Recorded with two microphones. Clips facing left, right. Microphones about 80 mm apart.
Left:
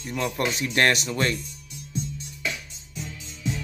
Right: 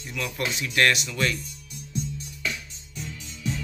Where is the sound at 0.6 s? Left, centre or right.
Left.